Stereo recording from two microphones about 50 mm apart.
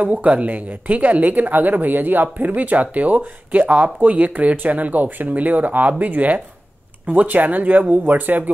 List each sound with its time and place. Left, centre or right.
0.0 s speech: right